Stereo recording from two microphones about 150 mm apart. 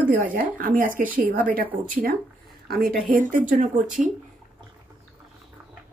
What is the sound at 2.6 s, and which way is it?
Speech, 85° right.